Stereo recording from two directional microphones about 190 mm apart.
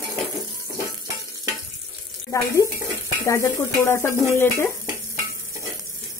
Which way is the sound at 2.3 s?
15° left (ahead or behind).